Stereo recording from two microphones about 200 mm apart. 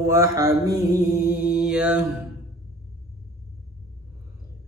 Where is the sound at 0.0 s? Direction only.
15° right (ahead or behind).